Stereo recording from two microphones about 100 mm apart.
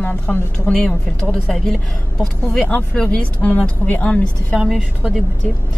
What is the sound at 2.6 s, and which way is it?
Speech, 15° left (ahead or behind).